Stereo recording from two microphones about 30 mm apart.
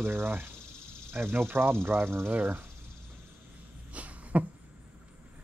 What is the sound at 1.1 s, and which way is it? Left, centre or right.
Speech, right.